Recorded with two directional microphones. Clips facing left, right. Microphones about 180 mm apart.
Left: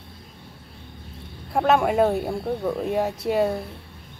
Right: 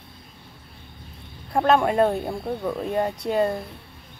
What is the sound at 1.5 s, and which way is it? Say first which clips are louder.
Speech: even; 5° left (ahead or behind).